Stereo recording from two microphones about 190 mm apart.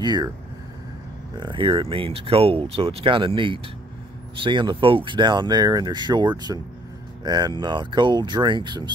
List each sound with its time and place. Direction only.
0.0 s speech: 20° right (ahead or behind)
1.4 s speech: 25° right (ahead or behind)